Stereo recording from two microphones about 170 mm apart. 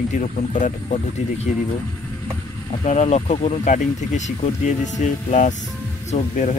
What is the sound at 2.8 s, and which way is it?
Speech, 40° left (ahead or behind).